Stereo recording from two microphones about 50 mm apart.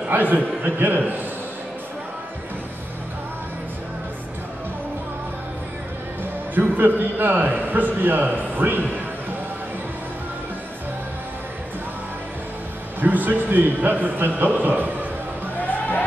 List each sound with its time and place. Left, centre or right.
0.1 s a man's voice: right
6.5 s a man's voice: right
13.0 s a man's voice: right